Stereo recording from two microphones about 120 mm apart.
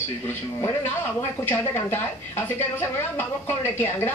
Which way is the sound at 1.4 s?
20° left (ahead or behind).